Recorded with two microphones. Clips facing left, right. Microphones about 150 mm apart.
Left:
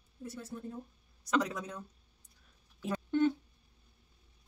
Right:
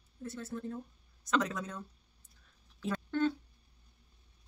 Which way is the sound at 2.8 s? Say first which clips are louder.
Left 2 dB; 15° left (ahead or behind).